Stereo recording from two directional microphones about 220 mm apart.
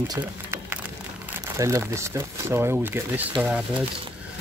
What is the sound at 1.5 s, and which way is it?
Speech, 15° right (ahead or behind).